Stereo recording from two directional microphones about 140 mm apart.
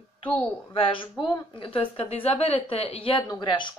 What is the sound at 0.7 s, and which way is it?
A woman's voice, 40° left (ahead or behind).